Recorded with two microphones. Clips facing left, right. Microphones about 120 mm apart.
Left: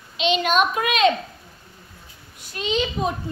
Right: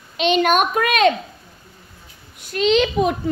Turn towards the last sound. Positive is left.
turn(degrees=-75)  # may be behind; listen again after turning